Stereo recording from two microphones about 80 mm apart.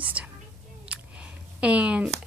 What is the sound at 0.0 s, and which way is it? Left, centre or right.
Whispering, centre.